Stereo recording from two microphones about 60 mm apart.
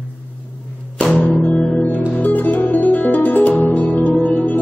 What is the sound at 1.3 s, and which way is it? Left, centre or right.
Music, centre.